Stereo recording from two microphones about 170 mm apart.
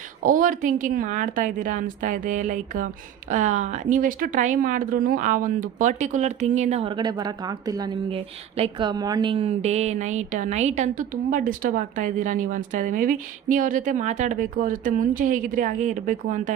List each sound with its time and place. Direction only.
0.2 s a woman's voice: 50° right (ahead or behind)